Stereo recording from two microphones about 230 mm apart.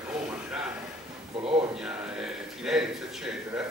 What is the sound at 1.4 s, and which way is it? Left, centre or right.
Speech, right.